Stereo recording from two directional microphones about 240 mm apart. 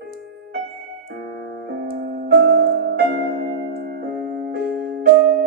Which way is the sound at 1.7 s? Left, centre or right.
Right.